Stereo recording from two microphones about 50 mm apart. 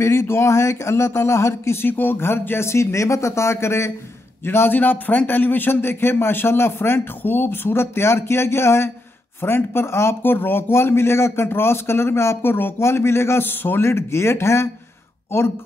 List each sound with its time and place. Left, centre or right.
0.0 s speech: left
4.5 s a man's voice: left
10.2 s speech: left
12.8 s speech: left
13.5 s a man's voice: left
13.8 s speech: left
15.3 s a man's voice: left